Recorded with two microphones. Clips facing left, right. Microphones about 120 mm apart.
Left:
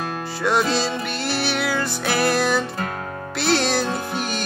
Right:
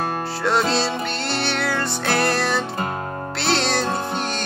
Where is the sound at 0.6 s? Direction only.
30° right (ahead or behind).